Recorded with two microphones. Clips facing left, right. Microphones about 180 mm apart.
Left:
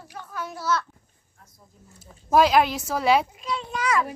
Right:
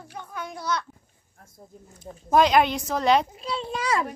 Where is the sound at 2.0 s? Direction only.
5° left (ahead or behind).